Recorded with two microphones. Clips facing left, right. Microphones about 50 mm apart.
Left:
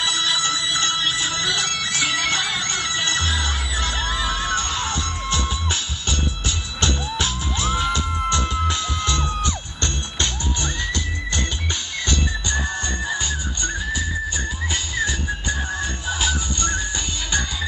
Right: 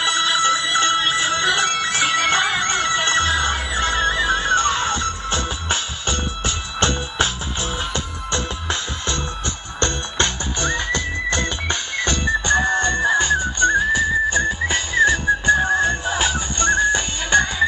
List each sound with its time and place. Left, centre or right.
0.0 s music: right